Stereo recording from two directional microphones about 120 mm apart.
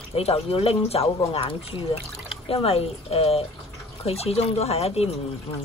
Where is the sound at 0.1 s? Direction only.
55° left (ahead or behind).